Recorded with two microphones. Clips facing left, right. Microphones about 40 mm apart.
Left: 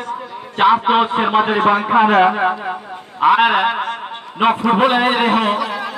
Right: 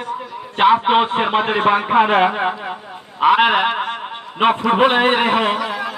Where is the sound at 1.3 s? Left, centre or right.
Centre.